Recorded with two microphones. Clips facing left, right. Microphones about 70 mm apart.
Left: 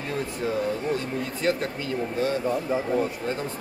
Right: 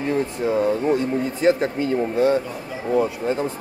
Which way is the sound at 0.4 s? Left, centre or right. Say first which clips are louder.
Right 6 dB; right.